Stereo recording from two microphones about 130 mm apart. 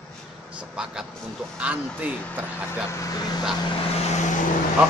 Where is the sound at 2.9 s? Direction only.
25° left (ahead or behind).